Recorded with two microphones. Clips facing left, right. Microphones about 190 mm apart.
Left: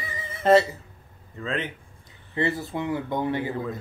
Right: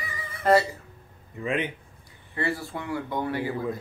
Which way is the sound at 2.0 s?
20° left (ahead or behind).